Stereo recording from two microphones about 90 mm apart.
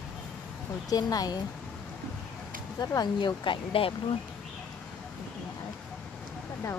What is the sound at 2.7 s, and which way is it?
Speech, 45° left (ahead or behind).